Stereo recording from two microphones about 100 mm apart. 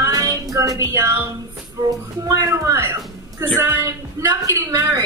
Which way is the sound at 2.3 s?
30° right (ahead or behind).